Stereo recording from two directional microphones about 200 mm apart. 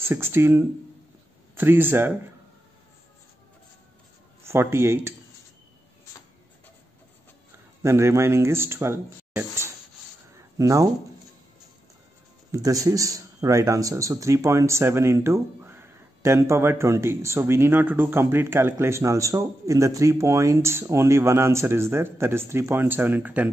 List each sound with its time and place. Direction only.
0.0 s speech: 10° right (ahead or behind)
4.4 s speech: 10° right (ahead or behind)
7.8 s speech: 15° right (ahead or behind)
10.3 s a sound: 15° right (ahead or behind)
12.4 s speech: 15° right (ahead or behind)